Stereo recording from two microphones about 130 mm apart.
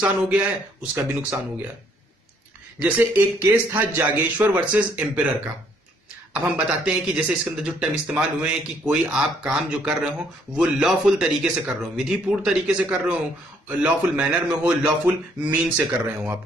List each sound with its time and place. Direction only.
0.0 s speech: 10° right (ahead or behind)
2.8 s speech: 15° right (ahead or behind)
6.3 s speech: 10° right (ahead or behind)